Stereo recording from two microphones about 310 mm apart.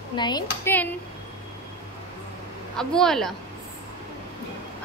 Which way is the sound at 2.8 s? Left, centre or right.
Centre.